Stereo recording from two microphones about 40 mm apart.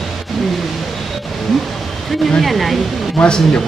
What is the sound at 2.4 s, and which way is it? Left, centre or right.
Speech, centre.